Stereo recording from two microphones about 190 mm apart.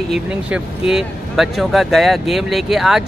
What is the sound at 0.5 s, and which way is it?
Speech, 5° right (ahead or behind).